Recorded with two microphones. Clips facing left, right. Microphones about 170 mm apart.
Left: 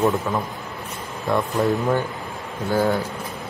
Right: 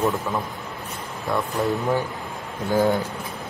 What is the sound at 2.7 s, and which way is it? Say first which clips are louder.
Speech: even; 15° right (ahead or behind).